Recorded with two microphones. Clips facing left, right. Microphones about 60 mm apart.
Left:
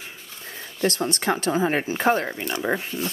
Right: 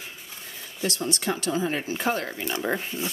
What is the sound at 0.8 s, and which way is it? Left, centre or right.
Speech, left.